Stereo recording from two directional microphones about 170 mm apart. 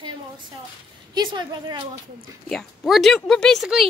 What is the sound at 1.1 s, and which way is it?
Speech, 25° right (ahead or behind).